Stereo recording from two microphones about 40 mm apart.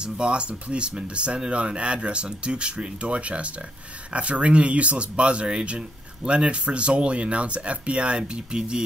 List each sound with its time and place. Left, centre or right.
0.0 s speech: right